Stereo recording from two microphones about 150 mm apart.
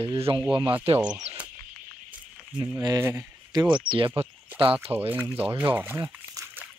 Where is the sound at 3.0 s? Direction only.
15° right (ahead or behind).